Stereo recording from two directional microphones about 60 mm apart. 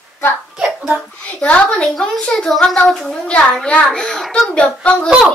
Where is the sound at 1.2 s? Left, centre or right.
Left.